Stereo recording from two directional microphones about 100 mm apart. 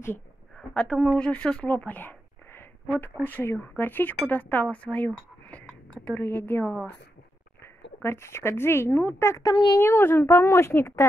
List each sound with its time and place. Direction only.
0.6 s a woman's voice: 15° left (ahead or behind)
9.4 s speech: 40° left (ahead or behind)
9.8 s a woman's voice: 25° left (ahead or behind)